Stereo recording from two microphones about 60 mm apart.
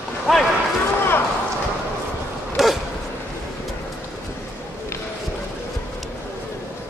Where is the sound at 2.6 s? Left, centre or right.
Centre.